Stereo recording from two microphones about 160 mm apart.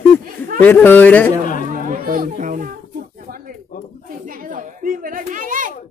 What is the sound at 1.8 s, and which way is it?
Children playing, 60° right (ahead or behind).